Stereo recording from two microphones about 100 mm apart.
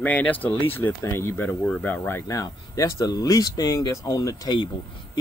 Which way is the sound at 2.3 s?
35° left (ahead or behind).